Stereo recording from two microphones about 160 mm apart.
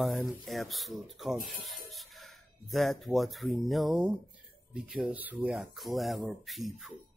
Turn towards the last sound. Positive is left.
turn(degrees=0)  # may be behind; listen again after turning